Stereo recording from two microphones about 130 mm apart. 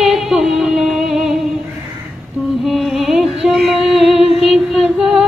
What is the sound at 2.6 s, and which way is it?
Music, centre (ahead or behind).